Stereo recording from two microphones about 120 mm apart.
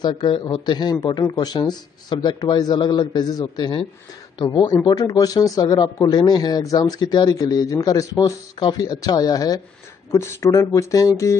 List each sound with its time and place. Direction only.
0.0 s speech: 40° left (ahead or behind)